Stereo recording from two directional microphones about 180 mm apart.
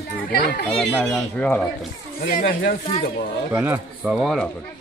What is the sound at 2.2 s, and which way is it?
Speech, 55° left (ahead or behind).